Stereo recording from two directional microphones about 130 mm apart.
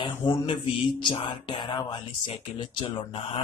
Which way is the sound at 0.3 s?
35° left (ahead or behind).